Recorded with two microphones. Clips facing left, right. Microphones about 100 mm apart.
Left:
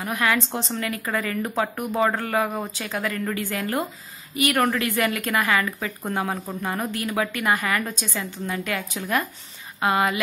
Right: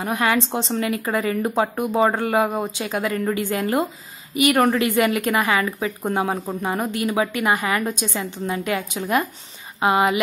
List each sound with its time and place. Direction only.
0.0 s speech: 25° right (ahead or behind)